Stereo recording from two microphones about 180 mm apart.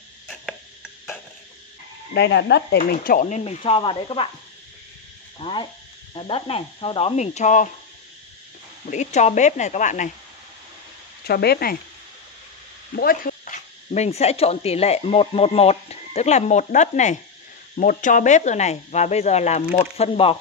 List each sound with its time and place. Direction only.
2.1 s speech: 70° left (ahead or behind)
2.8 s speech: 55° left (ahead or behind); by 4.3 s 30° left (ahead or behind)
5.4 s speech: 25° left (ahead or behind); by 7.7 s 45° left (ahead or behind)
8.9 s speech: 40° left (ahead or behind)
11.2 s speech: 60° left (ahead or behind)
12.9 s speech: 55° left (ahead or behind); by 20.3 s 35° left (ahead or behind)